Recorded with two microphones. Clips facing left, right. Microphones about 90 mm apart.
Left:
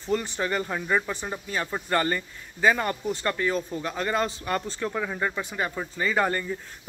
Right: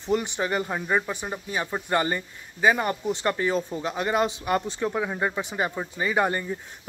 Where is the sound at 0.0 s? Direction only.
20° right (ahead or behind).